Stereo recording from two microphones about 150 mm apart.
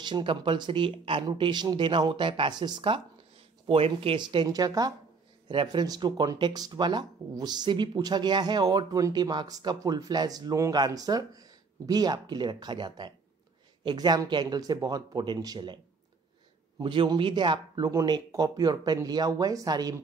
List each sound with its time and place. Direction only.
0.0 s speech: 30° right (ahead or behind)
16.8 s speech: 35° right (ahead or behind)